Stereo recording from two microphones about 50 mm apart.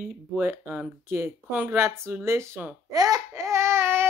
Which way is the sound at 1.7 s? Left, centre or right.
Right.